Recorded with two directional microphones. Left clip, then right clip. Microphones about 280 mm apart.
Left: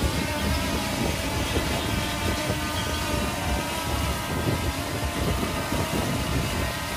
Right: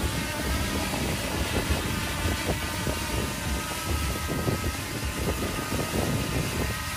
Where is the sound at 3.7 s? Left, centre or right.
Centre.